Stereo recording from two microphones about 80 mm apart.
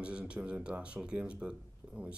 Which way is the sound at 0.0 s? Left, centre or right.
Centre.